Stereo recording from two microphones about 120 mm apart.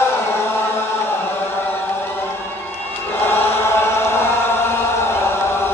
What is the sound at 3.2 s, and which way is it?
Chant, 20° left (ahead or behind).